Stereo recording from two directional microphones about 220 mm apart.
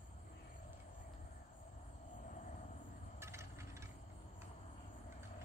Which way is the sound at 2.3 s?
35° left (ahead or behind).